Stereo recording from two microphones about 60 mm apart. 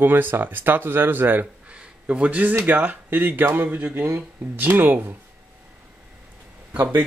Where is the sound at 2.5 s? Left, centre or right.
Right.